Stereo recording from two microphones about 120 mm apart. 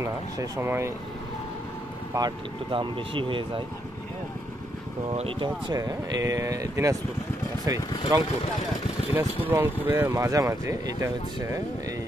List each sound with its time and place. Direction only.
0.0 s speech: 20° right (ahead or behind)
2.1 s speech: 40° right (ahead or behind)
5.1 s speech: 55° right (ahead or behind)
5.7 s speech: 30° right (ahead or behind)
9.1 s speech: 15° right (ahead or behind)